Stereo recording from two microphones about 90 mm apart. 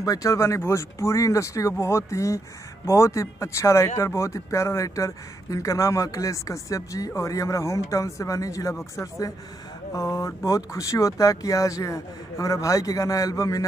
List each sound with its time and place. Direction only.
0.0 s speech: 40° left (ahead or behind)